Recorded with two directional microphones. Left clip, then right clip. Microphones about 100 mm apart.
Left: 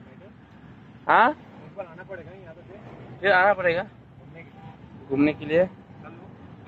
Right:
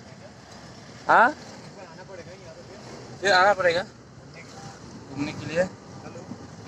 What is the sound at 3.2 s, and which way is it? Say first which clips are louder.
Speech: even; 30° left (ahead or behind).